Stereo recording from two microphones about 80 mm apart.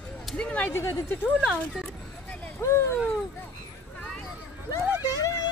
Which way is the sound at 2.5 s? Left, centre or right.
Left.